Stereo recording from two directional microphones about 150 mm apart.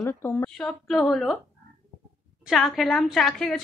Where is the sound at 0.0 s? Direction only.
15° left (ahead or behind).